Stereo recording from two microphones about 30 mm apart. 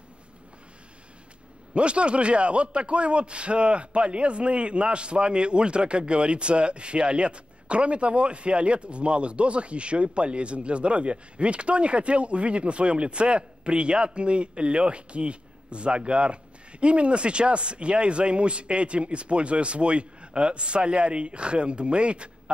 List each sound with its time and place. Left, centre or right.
1.7 s a man's voice: right